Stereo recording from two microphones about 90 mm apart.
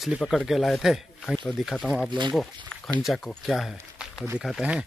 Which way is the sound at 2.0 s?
60° right (ahead or behind).